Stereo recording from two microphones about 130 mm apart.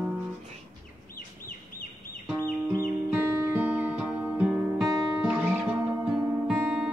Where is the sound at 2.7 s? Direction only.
20° right (ahead or behind).